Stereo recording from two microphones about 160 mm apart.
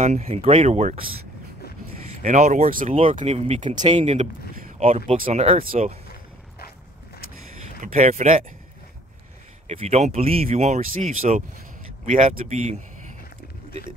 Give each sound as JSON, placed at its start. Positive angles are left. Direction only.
{"t": 0.0, "sound": "speech", "side_deg": -40}
{"t": 2.2, "sound": "speech", "side_deg": -50}
{"t": 2.9, "sound": "speech", "side_deg": -35}
{"t": 7.8, "sound": "speech", "side_deg": -55}
{"t": 9.7, "sound": "speech", "side_deg": -45}